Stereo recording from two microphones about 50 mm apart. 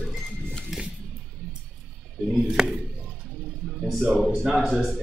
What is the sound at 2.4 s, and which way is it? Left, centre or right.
Speech, centre.